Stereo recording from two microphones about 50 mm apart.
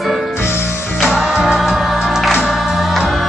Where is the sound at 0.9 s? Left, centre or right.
Centre.